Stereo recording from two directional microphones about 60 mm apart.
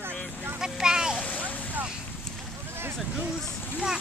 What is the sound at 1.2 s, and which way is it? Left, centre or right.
Boat, left.